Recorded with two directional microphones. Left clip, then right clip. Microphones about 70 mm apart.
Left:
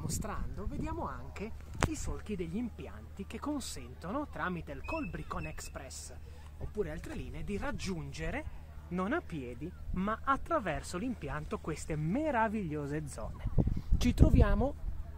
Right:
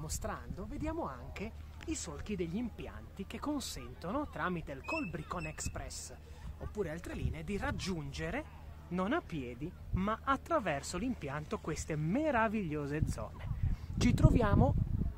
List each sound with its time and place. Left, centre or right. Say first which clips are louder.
0.0 s speech: even; centre
1.9 s speech: even; centre
4.1 s speech: even; centre
7.4 s speech: even; left
12.8 s speech: even; left
13.9 s speech: left 1 dB; left